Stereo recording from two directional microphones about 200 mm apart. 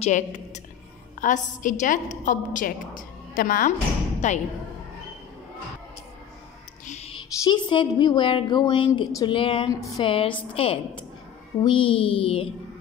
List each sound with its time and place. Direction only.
0.0 s a woman's voice: 35° left (ahead or behind)
6.9 s a woman's voice: 30° left (ahead or behind)